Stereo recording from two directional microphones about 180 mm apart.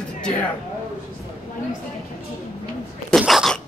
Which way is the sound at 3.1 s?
Centre (ahead or behind).